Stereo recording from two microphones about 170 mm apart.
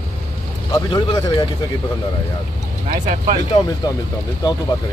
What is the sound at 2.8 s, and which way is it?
Speech, 50° right (ahead or behind).